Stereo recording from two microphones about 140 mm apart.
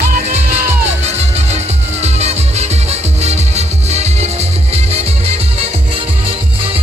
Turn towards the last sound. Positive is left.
turn(degrees=-45)  # may be behind; listen again after turning